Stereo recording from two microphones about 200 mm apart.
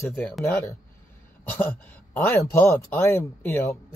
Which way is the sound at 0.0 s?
15° left (ahead or behind).